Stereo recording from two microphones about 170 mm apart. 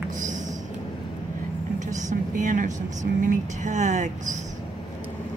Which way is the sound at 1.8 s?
45° right (ahead or behind).